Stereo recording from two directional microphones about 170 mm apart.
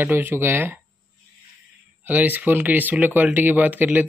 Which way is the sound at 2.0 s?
10° right (ahead or behind).